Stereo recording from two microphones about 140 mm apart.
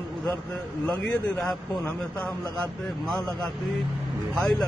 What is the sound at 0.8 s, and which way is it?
Speech, 5° left (ahead or behind).